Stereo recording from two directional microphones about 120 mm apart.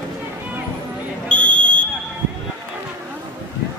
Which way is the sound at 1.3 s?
10° left (ahead or behind).